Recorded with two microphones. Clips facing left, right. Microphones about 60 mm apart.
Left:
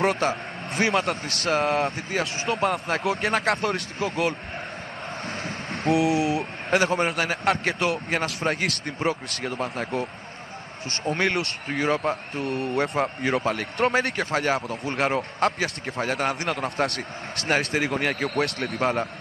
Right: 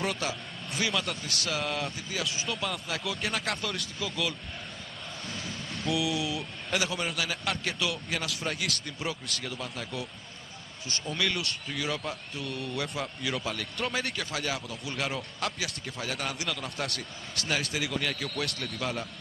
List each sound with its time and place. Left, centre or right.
0.0 s speech: left